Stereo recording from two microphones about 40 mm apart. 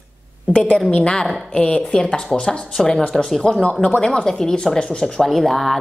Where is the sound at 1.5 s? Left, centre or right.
Left.